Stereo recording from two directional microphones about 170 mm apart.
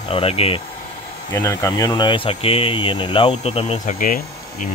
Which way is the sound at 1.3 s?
15° left (ahead or behind).